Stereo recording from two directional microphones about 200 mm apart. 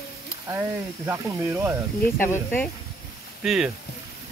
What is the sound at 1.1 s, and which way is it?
Speech, 10° right (ahead or behind).